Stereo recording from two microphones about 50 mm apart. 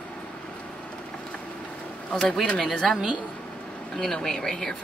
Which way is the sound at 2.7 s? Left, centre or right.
Centre.